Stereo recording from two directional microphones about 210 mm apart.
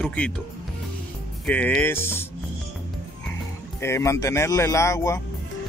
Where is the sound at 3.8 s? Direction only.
15° left (ahead or behind).